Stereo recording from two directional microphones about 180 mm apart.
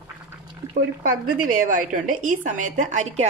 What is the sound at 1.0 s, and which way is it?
A woman's voice, 50° right (ahead or behind).